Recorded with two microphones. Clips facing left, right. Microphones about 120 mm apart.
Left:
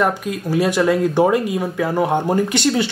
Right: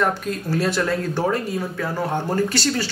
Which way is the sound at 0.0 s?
10° left (ahead or behind).